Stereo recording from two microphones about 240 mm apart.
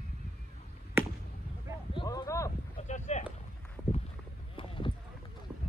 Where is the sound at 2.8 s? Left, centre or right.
Left.